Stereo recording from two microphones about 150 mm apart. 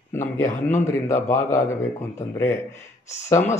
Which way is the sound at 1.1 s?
55° left (ahead or behind).